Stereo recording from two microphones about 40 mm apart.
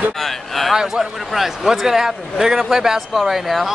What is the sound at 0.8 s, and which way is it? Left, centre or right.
A man's voice, centre.